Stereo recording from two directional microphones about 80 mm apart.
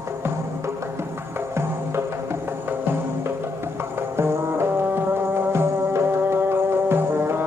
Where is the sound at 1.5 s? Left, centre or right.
Right.